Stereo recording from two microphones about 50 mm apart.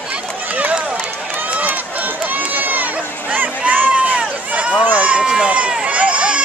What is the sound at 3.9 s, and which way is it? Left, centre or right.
Run, right.